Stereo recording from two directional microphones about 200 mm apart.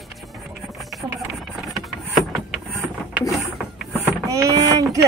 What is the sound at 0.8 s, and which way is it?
Vehicle, centre (ahead or behind).